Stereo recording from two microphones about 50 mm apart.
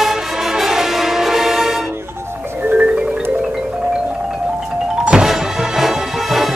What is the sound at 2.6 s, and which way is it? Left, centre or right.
Music, right.